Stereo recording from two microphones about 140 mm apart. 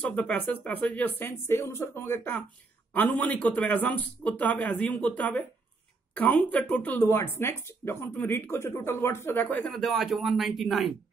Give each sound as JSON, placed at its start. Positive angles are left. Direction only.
{"t": 0.0, "sound": "a woman's voice", "side_deg": 10}